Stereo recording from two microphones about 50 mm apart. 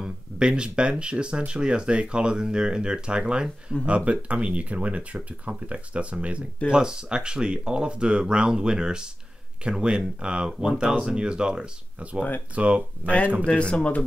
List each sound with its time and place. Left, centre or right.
0.0 s speech: centre
13.0 s speech: left